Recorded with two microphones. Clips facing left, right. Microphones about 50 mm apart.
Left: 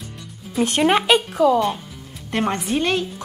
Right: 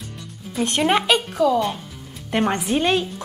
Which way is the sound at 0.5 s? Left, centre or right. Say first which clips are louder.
Left 3 dB; centre.